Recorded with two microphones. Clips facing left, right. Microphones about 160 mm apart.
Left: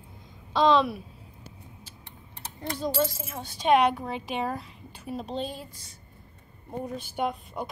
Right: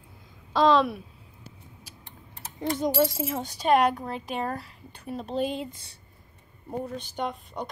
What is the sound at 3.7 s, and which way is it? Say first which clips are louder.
A woman's voice: even; centre (ahead or behind).